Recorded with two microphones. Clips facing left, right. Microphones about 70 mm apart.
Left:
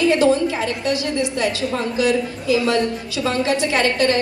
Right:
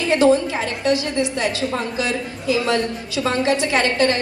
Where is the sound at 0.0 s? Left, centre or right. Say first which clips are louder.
Even; right.